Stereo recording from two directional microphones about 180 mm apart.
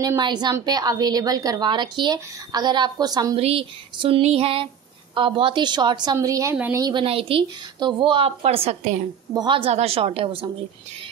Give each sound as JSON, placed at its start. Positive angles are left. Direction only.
{"t": 0.0, "sound": "a woman's voice", "side_deg": -20}
{"t": 3.3, "sound": "music", "side_deg": -35}
{"t": 5.1, "sound": "a woman's voice", "side_deg": -30}
{"t": 6.8, "sound": "a woman's voice", "side_deg": -25}
{"t": 9.3, "sound": "music", "side_deg": -25}